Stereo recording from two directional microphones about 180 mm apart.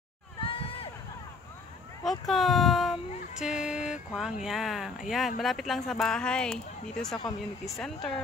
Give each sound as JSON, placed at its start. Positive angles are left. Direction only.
{"t": 0.4, "sound": "crowd", "side_deg": 30}
{"t": 2.0, "sound": "speech", "side_deg": 0}